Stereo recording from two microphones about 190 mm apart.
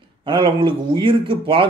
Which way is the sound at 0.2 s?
25° right (ahead or behind).